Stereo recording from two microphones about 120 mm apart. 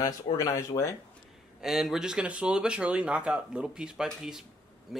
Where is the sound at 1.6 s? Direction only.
5° right (ahead or behind).